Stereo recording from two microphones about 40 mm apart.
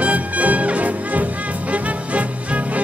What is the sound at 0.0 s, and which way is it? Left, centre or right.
Music, right.